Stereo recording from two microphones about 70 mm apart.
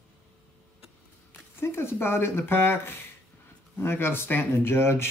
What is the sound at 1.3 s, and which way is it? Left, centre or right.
Speech, left.